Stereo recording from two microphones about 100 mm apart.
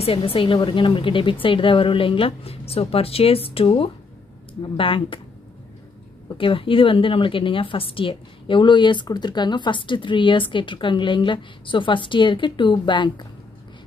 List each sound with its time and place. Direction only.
0.0 s a woman's voice: 65° left (ahead or behind)
6.3 s a woman's voice: 60° left (ahead or behind)